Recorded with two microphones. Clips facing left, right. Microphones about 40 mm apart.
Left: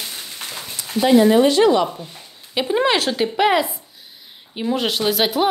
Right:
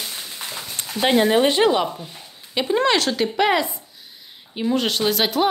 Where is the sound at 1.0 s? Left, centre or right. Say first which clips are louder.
Left 4 dB; right.